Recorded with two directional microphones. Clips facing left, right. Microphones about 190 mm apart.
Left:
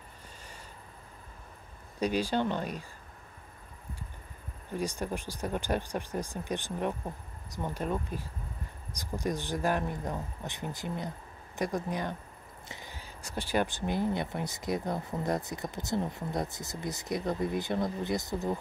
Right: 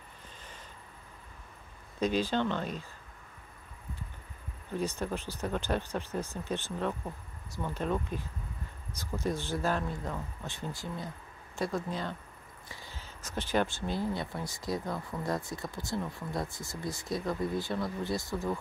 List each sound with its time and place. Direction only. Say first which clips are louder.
2.0 s speech: even; 10° left (ahead or behind)
4.7 s speech: even; 10° left (ahead or behind)